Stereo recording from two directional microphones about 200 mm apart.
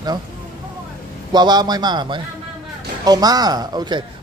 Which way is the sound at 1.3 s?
20° right (ahead or behind).